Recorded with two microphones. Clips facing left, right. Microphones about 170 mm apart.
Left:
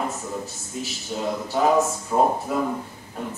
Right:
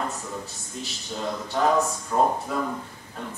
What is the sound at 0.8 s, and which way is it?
A man's voice, 10° left (ahead or behind).